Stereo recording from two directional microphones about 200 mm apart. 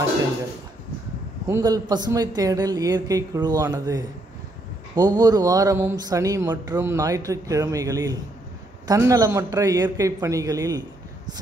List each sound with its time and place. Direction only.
1.5 s a woman's voice: 20° right (ahead or behind)